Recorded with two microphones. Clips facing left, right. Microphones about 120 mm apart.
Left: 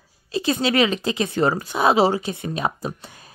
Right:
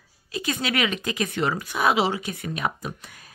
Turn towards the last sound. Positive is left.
turn(degrees=30)  # may be behind; listen again after turning